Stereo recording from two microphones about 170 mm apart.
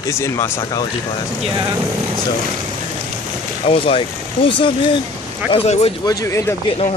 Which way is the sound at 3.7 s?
30° left (ahead or behind).